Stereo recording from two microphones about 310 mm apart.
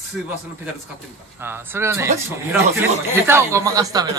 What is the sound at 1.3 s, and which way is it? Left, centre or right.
A man's voice, centre.